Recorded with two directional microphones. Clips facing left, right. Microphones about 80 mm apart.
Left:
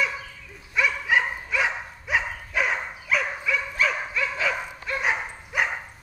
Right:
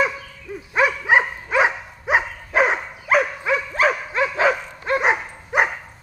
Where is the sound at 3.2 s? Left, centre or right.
Right.